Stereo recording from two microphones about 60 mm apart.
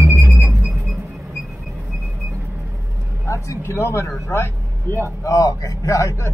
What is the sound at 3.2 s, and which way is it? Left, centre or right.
Vehicle, left.